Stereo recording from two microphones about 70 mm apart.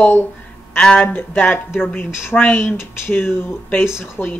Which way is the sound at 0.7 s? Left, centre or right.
Centre.